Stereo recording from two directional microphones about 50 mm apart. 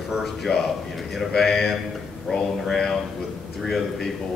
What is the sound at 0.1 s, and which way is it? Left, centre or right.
A man's voice, centre.